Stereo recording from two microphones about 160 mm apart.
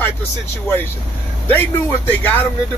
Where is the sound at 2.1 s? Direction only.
10° left (ahead or behind).